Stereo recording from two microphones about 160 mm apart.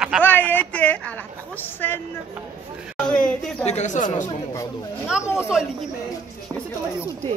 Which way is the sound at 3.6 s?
45° left (ahead or behind).